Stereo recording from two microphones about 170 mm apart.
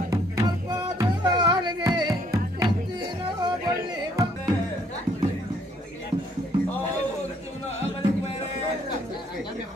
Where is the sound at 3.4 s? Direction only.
25° right (ahead or behind).